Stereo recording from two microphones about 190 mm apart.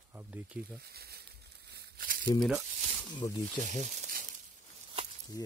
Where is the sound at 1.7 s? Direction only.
55° right (ahead or behind).